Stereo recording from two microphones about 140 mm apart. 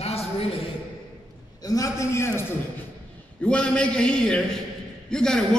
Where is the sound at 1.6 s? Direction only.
25° left (ahead or behind).